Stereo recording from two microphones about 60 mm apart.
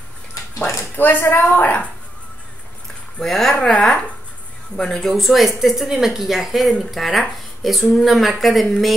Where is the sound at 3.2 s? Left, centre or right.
Centre.